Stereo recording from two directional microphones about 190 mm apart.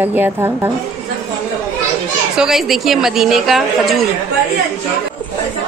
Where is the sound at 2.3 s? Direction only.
Centre (ahead or behind).